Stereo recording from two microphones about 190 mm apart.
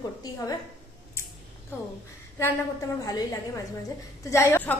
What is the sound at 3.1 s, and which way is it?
A woman's voice, 20° left (ahead or behind).